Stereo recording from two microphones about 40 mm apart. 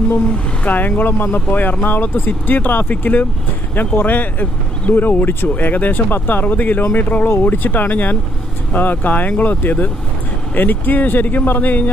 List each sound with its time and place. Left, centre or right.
0.7 s speech: left